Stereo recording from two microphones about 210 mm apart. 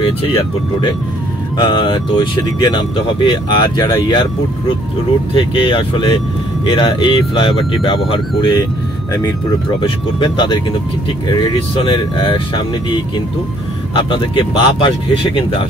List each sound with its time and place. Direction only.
0.0 s speech: 25° left (ahead or behind)
9.8 s speech: 25° left (ahead or behind)